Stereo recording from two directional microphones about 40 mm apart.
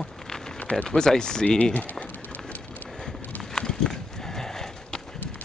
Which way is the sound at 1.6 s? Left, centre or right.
Left.